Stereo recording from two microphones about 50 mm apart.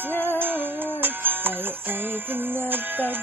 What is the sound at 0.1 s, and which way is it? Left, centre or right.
Music, left.